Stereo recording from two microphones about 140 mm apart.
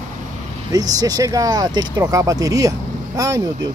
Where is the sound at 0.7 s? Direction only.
25° right (ahead or behind).